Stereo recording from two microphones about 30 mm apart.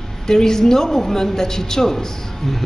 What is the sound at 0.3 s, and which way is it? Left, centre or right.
A woman's voice, centre.